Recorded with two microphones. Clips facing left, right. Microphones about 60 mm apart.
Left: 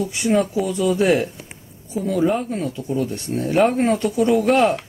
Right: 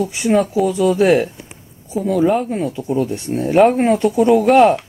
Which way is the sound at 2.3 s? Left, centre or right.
Centre.